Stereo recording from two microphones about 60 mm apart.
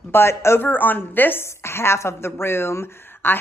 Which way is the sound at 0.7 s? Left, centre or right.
Left.